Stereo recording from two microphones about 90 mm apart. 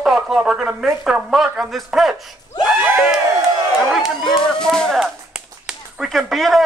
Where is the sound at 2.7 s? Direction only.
20° right (ahead or behind).